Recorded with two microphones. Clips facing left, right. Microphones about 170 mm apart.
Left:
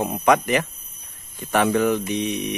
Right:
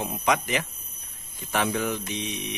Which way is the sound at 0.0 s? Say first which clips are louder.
Left 7 dB; 60° left (ahead or behind).